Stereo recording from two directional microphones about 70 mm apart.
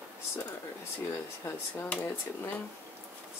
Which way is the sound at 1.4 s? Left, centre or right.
Left.